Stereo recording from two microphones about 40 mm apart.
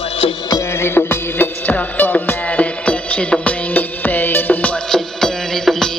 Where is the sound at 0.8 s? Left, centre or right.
Left.